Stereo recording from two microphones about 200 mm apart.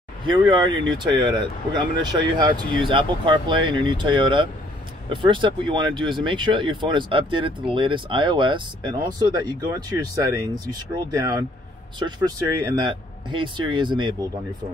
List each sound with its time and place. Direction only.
0.3 s speech: 25° right (ahead or behind)
12.7 s speech: 25° right (ahead or behind)